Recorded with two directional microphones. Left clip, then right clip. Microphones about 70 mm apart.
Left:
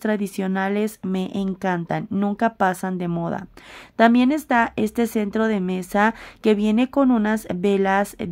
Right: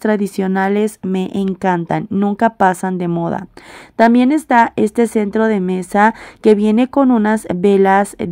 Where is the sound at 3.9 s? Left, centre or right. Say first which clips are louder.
Right 5 dB; right.